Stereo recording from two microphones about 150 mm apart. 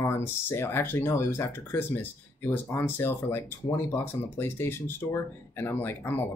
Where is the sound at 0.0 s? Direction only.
15° left (ahead or behind).